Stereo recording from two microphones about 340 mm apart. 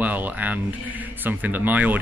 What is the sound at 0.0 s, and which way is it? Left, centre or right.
Speech, centre.